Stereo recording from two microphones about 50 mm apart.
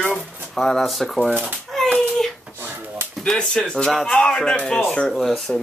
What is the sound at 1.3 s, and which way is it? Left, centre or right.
Speech, right.